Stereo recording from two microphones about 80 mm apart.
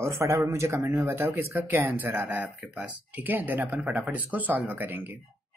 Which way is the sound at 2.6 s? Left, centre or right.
Centre.